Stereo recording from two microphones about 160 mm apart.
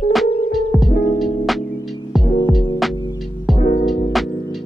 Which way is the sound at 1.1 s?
Centre (ahead or behind).